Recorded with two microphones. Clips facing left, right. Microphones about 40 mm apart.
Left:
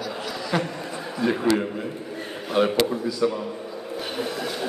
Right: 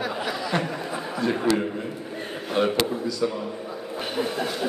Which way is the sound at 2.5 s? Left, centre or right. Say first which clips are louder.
Left 2 dB; centre.